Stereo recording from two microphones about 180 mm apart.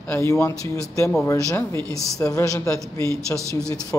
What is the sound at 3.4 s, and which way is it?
Speech, 15° right (ahead or behind).